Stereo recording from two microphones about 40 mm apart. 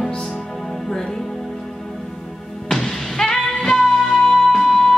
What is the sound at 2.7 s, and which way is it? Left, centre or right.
Music, centre.